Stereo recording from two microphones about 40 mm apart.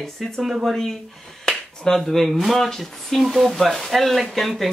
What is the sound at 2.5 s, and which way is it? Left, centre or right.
Speech, centre.